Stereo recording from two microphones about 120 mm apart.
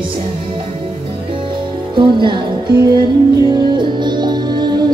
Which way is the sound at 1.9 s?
40° right (ahead or behind).